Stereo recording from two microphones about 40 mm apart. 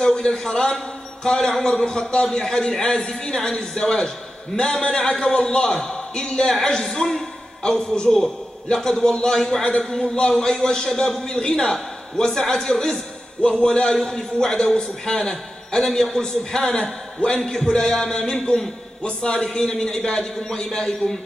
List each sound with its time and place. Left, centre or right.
0.0 s a man's voice: centre
0.7 s a sound: centre
1.6 s a man's voice: centre
6.9 s a man's voice: centre
17.4 s a man's voice: centre
19.0 s a man's voice: left